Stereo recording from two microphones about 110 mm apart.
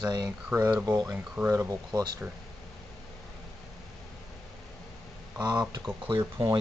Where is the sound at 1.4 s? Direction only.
25° right (ahead or behind).